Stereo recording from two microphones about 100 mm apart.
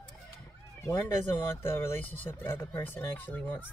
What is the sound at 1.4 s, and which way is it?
Speech, 25° left (ahead or behind).